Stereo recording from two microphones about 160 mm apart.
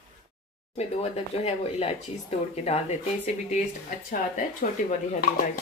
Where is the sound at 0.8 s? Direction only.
40° left (ahead or behind).